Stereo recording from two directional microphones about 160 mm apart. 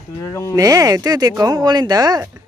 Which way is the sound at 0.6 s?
20° right (ahead or behind).